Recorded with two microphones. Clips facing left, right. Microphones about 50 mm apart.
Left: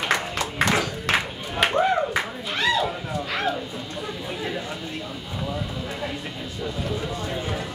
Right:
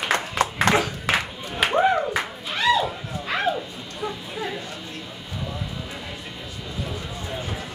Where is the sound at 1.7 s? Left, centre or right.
Centre.